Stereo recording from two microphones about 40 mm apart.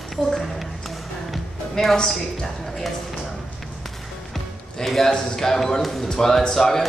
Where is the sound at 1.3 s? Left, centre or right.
Centre.